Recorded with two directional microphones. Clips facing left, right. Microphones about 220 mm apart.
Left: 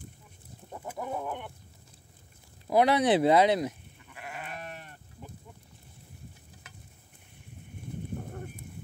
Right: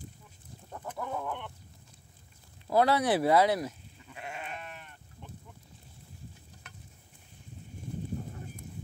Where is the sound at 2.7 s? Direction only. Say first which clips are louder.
Left 2 dB; 15° left (ahead or behind).